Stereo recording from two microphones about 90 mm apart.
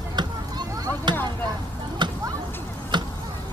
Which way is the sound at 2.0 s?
60° right (ahead or behind).